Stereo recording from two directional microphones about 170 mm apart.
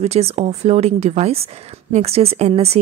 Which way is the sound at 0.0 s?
40° right (ahead or behind).